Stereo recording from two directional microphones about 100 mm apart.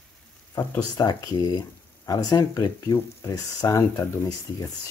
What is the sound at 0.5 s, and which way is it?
Speech, 30° left (ahead or behind).